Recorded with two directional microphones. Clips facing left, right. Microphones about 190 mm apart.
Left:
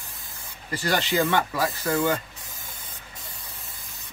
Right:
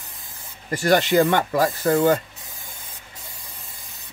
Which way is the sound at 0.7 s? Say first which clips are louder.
Right 7 dB; 50° right (ahead or behind).